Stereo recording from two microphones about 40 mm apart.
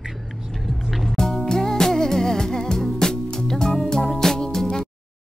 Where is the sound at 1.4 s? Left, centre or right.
Centre.